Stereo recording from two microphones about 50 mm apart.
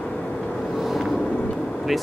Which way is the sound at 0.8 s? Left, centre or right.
Centre.